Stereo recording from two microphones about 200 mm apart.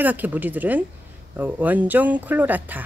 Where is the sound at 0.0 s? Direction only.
10° right (ahead or behind).